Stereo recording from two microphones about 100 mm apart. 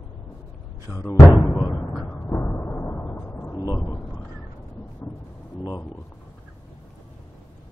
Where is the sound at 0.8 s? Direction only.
25° left (ahead or behind).